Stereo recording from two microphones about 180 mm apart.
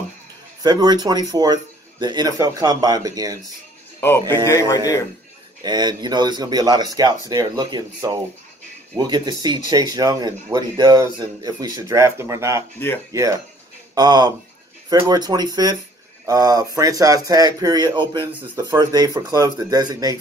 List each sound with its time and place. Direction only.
0.6 s speech: 20° right (ahead or behind)
4.5 s speech: 20° left (ahead or behind)
5.6 s speech: 25° right (ahead or behind)
12.7 s speech: 10° left (ahead or behind)
13.1 s speech: 15° right (ahead or behind)